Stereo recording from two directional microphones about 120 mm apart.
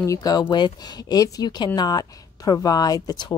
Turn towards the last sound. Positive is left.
turn(degrees=30)  # may be behind; listen again after turning